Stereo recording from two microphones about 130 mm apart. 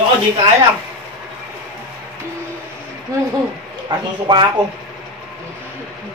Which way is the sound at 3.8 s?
35° right (ahead or behind).